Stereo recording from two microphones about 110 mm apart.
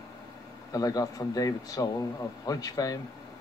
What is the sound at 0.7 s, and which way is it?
Speech, 35° left (ahead or behind).